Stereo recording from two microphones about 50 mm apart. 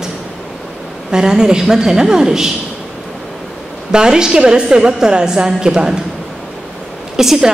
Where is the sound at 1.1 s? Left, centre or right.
Centre.